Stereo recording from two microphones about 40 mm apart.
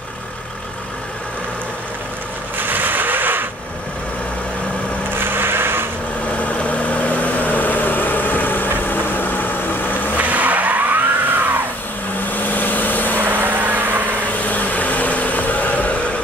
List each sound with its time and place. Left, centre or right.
2.5 s vehicle: right
5.1 s vehicle: right
6.6 s vehicle: left
10.1 s vehicle: right
12.4 s vehicle: left
13.2 s vehicle: right
14.4 s a sound: left